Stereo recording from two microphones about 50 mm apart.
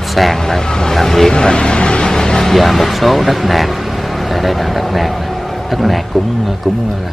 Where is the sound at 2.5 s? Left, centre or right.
Centre.